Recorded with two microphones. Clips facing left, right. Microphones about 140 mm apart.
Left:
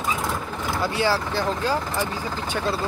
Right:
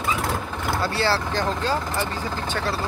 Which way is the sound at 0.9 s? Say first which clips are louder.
Left 2 dB; 15° left (ahead or behind).